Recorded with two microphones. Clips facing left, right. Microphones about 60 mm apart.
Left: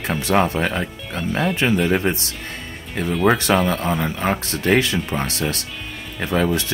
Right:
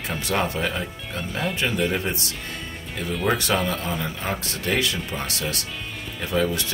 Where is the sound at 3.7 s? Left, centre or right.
Left.